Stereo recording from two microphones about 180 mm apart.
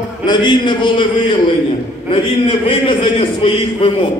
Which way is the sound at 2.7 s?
30° left (ahead or behind).